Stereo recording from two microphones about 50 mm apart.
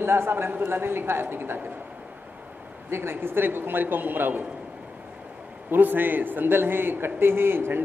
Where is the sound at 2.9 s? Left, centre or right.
Right.